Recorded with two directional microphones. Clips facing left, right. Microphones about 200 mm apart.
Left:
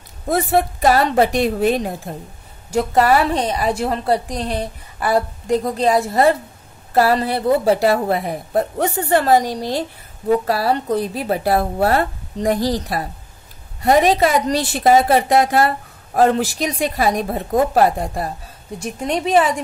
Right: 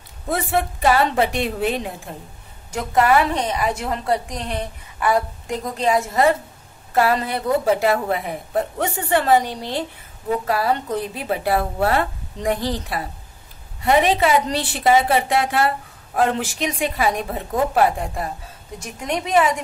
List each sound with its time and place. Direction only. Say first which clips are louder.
0.3 s a woman's voice: left 5 dB; 40° left (ahead or behind)